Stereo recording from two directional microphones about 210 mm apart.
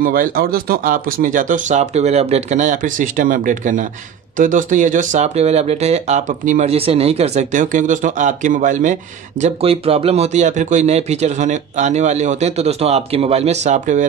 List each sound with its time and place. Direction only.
0.0 s speech: 40° right (ahead or behind)